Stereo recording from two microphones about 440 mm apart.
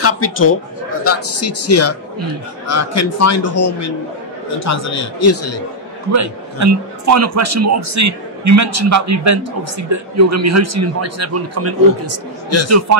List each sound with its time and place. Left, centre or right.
0.0 s a man's voice: left
5.2 s a man's voice: left
6.1 s a man's voice: right